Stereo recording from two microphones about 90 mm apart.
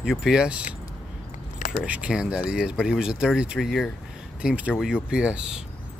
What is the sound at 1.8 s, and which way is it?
Speech, 10° right (ahead or behind).